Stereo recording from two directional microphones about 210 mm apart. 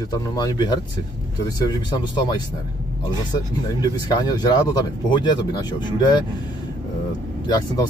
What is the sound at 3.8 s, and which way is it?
Speech, 20° left (ahead or behind).